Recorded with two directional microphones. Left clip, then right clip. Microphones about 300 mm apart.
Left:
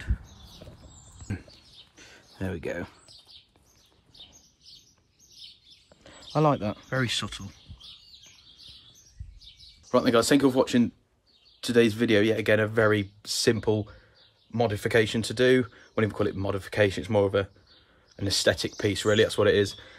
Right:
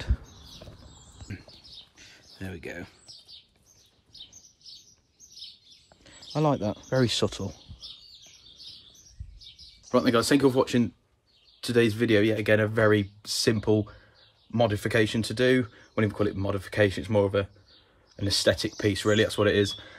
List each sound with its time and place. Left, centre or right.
2.0 s a sound: centre
4.1 s bird: right
6.3 s speech: centre
9.8 s speech: centre